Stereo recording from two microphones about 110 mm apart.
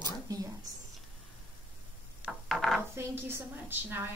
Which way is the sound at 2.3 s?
Centre (ahead or behind).